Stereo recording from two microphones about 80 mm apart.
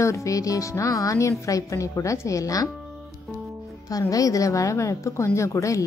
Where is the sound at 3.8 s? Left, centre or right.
Left.